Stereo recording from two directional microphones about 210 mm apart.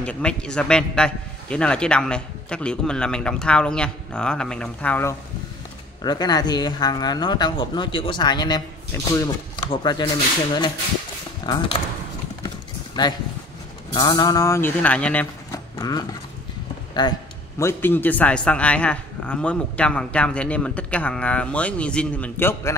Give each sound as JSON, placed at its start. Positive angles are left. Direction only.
{"t": 0.0, "sound": "a man's voice", "side_deg": 5}
{"t": 6.0, "sound": "speech", "side_deg": 20}
{"t": 11.4, "sound": "speech", "side_deg": 20}
{"t": 12.4, "sound": "a sound", "side_deg": 20}
{"t": 13.9, "sound": "speech", "side_deg": 20}
{"t": 15.8, "sound": "speech", "side_deg": 20}
{"t": 17.6, "sound": "a man's voice", "side_deg": 10}